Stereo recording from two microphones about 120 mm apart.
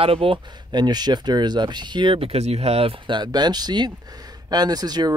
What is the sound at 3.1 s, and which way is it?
Speech, 35° right (ahead or behind).